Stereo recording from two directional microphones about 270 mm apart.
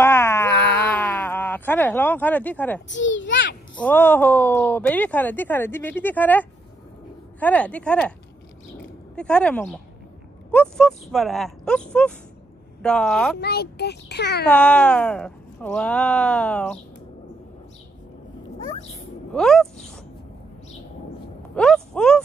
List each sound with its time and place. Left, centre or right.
0.0 s a sound: centre
0.5 s a sound: left
0.9 s a sound: centre
2.9 s a child's voice: left
3.7 s speech: centre
9.1 s speech: centre
13.4 s a child's voice: left
14.4 s speech: centre
18.9 s speech: centre
21.5 s speech: centre